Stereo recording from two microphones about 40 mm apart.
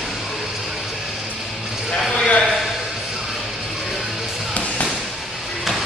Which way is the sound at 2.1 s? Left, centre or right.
Left.